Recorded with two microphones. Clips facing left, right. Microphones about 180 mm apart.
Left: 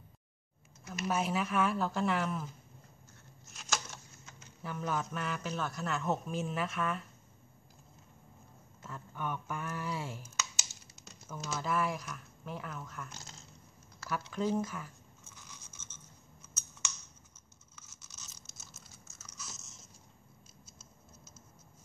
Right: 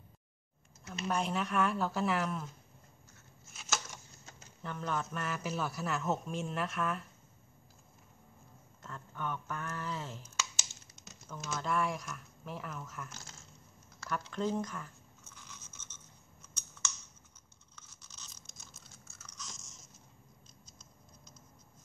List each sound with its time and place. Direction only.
1.0 s a man's voice: 5° left (ahead or behind)
3.4 s a sound: 5° right (ahead or behind)
4.6 s a man's voice: 5° left (ahead or behind)
8.8 s speech: 10° left (ahead or behind)
13.1 s speech: 20° left (ahead or behind)
13.9 s speech: 5° left (ahead or behind)
15.5 s a sound: 10° left (ahead or behind)
17.7 s a sound: 5° left (ahead or behind)
20.6 s scissors: 10° left (ahead or behind)